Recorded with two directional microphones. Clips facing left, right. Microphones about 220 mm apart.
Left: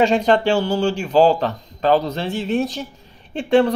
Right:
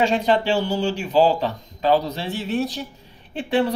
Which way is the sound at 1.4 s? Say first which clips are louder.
Left 2 dB; 10° right (ahead or behind).